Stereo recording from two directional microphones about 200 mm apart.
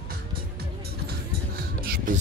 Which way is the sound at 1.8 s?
45° right (ahead or behind).